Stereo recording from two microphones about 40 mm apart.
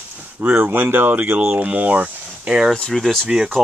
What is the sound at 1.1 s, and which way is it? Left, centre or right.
Speech, right.